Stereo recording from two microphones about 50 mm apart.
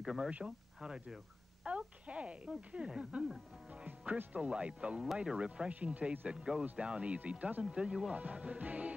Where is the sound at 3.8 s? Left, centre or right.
Right.